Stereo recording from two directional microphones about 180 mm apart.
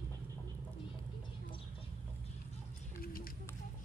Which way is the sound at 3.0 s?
55° left (ahead or behind).